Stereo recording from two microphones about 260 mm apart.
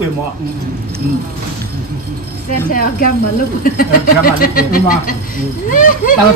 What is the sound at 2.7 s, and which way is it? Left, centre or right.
Speech, left.